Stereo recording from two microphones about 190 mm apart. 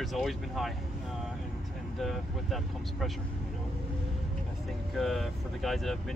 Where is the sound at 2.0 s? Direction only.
Centre (ahead or behind).